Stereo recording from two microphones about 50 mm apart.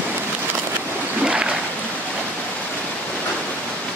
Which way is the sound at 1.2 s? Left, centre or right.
Centre.